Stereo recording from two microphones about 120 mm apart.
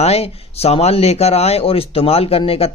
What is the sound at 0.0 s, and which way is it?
A man's voice, 60° left (ahead or behind).